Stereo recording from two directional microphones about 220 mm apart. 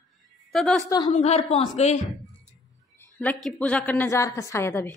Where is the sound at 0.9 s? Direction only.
20° left (ahead or behind).